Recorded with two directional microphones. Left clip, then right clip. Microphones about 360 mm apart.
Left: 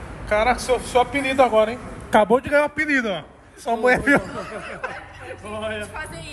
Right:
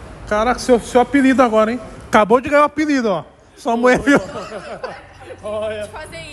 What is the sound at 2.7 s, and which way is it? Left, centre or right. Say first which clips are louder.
Speech: right 3 dB; centre.